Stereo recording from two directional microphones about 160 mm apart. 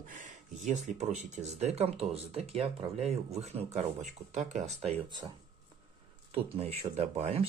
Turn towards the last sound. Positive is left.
turn(degrees=-40)  # may be behind; listen again after turning